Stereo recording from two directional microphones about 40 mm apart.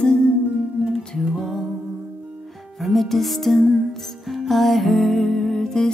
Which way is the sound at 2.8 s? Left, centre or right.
Centre.